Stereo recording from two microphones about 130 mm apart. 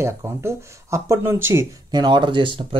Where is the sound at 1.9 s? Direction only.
35° right (ahead or behind).